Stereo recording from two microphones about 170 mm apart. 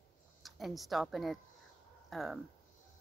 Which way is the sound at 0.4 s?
Centre (ahead or behind).